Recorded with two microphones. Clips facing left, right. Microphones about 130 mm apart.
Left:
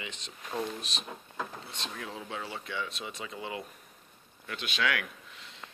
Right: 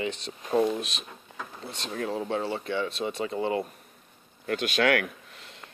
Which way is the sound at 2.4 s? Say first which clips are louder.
Right 8 dB; 30° right (ahead or behind).